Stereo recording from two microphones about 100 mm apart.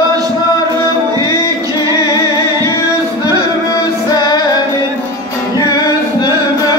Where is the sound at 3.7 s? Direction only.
45° left (ahead or behind).